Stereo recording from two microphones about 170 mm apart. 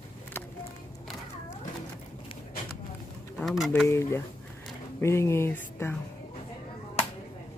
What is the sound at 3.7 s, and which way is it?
Speech, 15° left (ahead or behind).